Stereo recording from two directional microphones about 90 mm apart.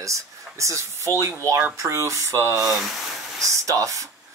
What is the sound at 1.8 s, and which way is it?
Speech, 35° right (ahead or behind).